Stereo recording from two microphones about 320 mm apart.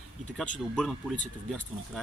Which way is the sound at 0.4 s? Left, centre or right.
Centre.